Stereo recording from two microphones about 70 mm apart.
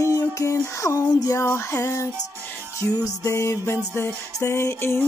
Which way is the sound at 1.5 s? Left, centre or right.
Left.